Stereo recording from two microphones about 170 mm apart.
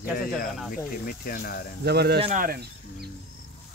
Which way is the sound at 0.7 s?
55° left (ahead or behind).